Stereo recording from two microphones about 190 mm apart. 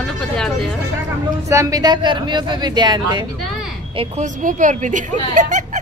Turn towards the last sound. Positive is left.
turn(degrees=-40)  # may be behind; listen again after turning